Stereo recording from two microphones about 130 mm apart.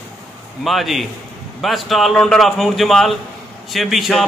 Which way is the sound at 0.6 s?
Centre (ahead or behind).